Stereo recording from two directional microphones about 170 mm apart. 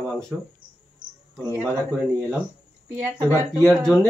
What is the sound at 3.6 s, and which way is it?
Speech, 5° left (ahead or behind).